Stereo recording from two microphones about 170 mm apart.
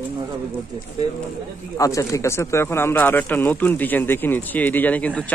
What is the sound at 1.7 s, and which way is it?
Speech, 20° left (ahead or behind).